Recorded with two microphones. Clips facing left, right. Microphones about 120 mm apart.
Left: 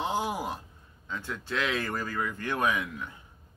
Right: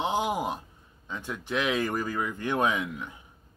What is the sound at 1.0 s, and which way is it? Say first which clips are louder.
Speech: right 1 dB; 20° right (ahead or behind).